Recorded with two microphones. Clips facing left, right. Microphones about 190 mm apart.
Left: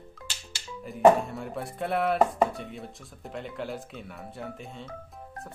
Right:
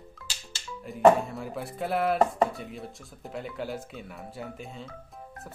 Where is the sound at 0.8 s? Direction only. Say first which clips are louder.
Even; centre (ahead or behind).